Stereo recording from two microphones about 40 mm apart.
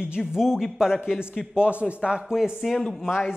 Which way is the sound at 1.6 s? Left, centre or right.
Right.